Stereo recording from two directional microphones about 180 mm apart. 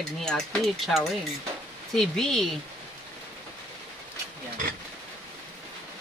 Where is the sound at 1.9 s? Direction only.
5° left (ahead or behind).